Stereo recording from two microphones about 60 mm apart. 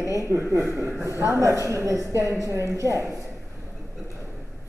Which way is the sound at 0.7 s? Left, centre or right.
Right.